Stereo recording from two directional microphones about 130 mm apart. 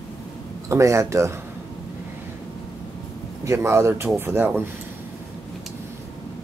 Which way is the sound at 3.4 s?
20° right (ahead or behind).